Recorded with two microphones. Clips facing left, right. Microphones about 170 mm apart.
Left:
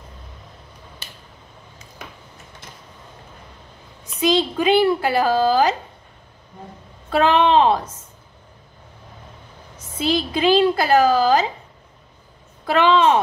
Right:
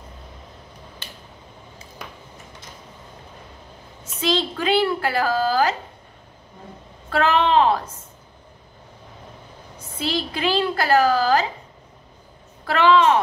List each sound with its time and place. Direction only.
4.0 s a woman's voice: 15° left (ahead or behind)
7.1 s a woman's voice: 20° left (ahead or behind)
9.9 s a woman's voice: 20° left (ahead or behind)
12.6 s a woman's voice: 20° left (ahead or behind)